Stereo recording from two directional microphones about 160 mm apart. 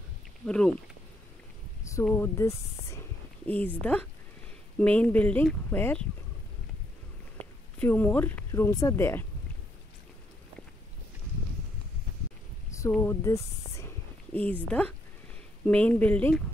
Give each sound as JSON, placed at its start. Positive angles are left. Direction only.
{"t": 0.5, "sound": "speech", "side_deg": 5}
{"t": 2.1, "sound": "speech", "side_deg": 15}
{"t": 7.8, "sound": "speech", "side_deg": 10}
{"t": 13.0, "sound": "speech", "side_deg": 15}